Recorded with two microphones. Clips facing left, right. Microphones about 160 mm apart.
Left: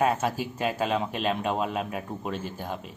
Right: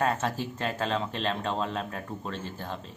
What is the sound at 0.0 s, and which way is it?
A man's voice, 10° left (ahead or behind).